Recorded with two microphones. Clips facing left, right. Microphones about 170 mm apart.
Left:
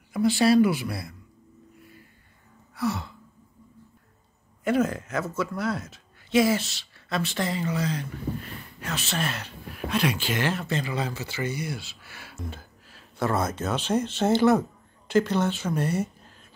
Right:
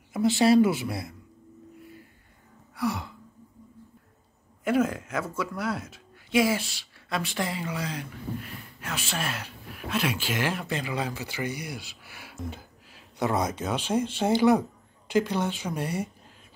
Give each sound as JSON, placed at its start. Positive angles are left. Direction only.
{"t": 0.1, "sound": "speech", "side_deg": -20}
{"t": 2.7, "sound": "gasp", "side_deg": -15}
{"t": 4.6, "sound": "speech", "side_deg": -5}